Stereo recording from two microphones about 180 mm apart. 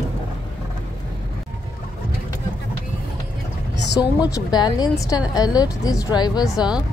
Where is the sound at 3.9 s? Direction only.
20° left (ahead or behind).